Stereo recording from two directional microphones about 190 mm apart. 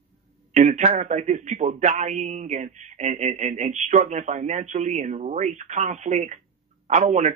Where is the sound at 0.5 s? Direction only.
40° right (ahead or behind).